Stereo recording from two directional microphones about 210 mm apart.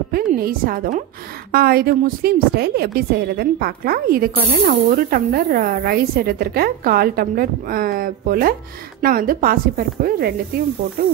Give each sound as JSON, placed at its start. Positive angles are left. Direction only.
{"t": 0.1, "sound": "a woman's voice", "side_deg": -45}